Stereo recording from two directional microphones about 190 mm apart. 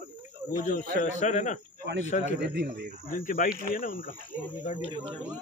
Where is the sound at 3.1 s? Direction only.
45° left (ahead or behind).